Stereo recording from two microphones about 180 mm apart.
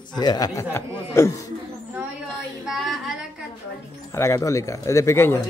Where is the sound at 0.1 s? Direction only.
20° left (ahead or behind).